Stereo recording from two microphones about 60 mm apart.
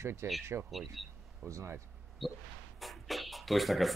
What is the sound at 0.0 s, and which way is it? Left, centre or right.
Speech, right.